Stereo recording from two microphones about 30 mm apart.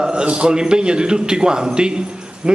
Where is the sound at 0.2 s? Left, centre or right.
Right.